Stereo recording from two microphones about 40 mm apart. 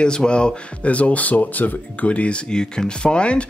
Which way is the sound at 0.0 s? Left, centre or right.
Left.